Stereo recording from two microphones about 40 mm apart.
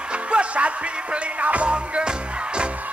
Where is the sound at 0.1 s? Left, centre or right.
Right.